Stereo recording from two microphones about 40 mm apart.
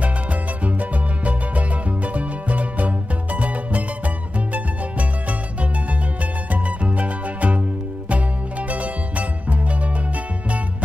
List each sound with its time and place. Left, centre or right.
0.0 s music: right
6.5 s music: right